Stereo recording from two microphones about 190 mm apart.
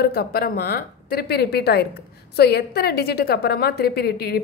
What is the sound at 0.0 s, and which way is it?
Speech, 55° left (ahead or behind).